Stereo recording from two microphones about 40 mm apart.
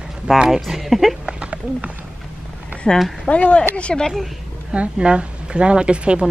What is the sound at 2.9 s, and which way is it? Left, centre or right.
Speech, centre.